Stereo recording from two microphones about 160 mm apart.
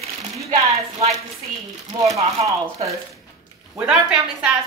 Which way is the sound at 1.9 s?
25° right (ahead or behind).